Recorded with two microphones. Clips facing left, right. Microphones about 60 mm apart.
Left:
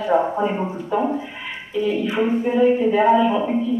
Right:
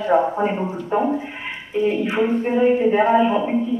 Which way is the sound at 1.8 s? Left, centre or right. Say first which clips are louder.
Right 1 dB; right.